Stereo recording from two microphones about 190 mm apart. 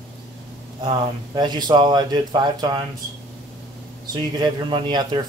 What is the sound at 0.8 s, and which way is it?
Speech, 25° right (ahead or behind).